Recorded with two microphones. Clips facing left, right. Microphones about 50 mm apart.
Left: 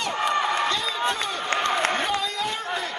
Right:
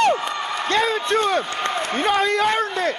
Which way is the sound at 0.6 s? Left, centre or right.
Right.